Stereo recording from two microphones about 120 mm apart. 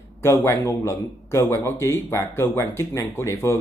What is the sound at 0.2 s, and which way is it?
A man's voice, 20° left (ahead or behind).